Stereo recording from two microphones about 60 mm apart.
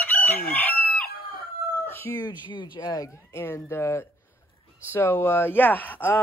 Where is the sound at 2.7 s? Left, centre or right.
Left.